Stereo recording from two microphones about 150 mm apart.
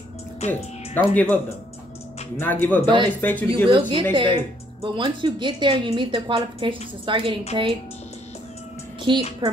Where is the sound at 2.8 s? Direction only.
30° right (ahead or behind).